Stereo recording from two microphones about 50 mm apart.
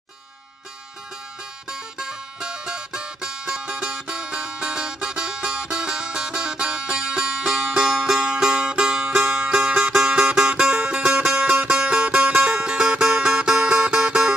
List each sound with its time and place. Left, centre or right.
1.7 s music: centre